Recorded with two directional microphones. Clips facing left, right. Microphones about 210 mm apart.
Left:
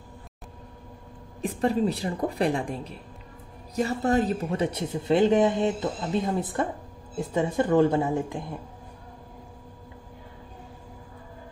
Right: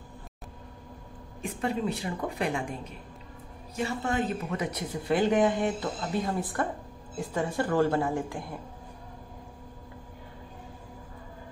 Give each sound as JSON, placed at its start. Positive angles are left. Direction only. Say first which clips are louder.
{"t": 1.4, "sound": "speech", "louder": "left 6 dB", "side_deg": 35}